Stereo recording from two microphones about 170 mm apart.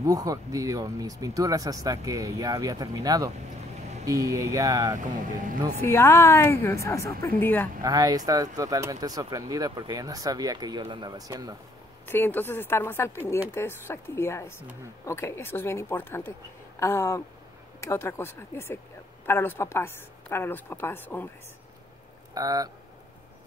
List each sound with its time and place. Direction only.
0.0 s speech: 20° right (ahead or behind)
5.8 s a woman's voice: 15° left (ahead or behind)
7.8 s speech: 20° right (ahead or behind)
12.1 s a woman's voice: 10° left (ahead or behind)
22.3 s speech: 20° right (ahead or behind)